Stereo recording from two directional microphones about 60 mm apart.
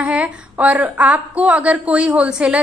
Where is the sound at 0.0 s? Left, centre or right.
Right.